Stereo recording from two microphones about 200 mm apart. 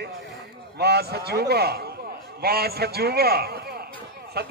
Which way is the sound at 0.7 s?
55° right (ahead or behind).